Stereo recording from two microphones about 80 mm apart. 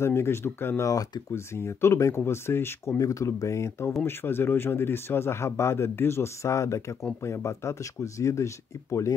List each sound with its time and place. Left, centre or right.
0.0 s speech: left
0.8 s speech: left
1.3 s speech: left